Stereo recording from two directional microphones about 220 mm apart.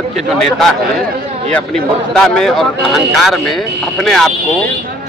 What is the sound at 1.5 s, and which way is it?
Speech, centre (ahead or behind).